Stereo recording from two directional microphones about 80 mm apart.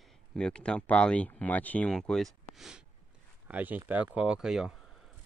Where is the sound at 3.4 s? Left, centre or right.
Right; by 4.7 s centre.